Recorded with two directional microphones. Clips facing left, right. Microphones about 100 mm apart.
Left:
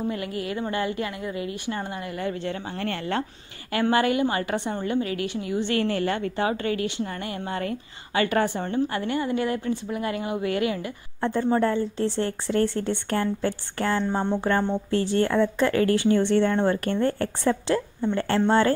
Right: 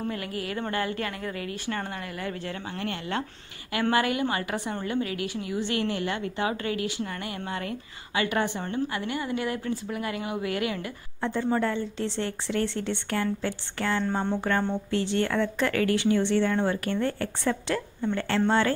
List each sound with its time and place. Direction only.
0.1 s a woman's voice: 25° left (ahead or behind)
5.9 s a woman's voice: 40° left (ahead or behind)
8.5 s a woman's voice: 25° left (ahead or behind)
11.5 s a woman's voice: 35° left (ahead or behind)
14.2 s a woman's voice: 25° left (ahead or behind)
14.9 s a woman's voice: 40° left (ahead or behind)
15.3 s a woman's voice: 25° left (ahead or behind)